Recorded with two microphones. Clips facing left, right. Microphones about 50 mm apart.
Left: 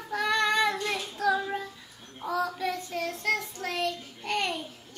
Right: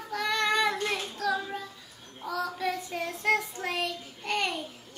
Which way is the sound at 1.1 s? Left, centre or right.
Centre.